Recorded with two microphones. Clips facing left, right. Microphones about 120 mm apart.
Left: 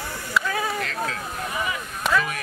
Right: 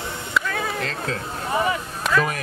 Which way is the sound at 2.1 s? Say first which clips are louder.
Right 1 dB; centre (ahead or behind).